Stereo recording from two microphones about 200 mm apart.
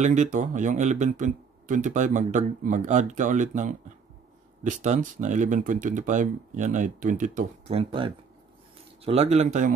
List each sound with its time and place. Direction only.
0.0 s speech: 35° right (ahead or behind)